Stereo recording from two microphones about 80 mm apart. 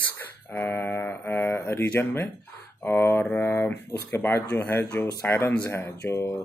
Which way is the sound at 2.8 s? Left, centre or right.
Left.